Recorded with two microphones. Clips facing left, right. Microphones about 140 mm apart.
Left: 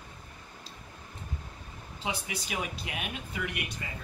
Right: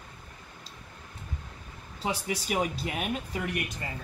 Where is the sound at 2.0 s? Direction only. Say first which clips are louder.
Right 4 dB; 40° right (ahead or behind).